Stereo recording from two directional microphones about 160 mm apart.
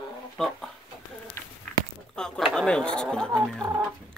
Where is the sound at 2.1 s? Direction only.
5° left (ahead or behind).